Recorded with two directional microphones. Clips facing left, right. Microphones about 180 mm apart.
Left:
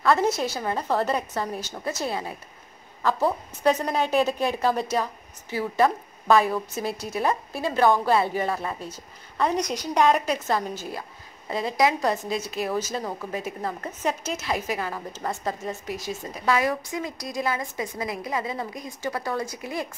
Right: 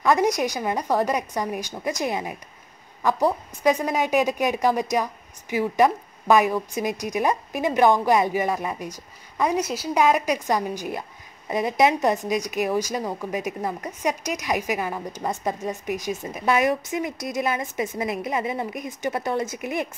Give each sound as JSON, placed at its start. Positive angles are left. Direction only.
{"t": 0.0, "sound": "a woman's voice", "side_deg": -15}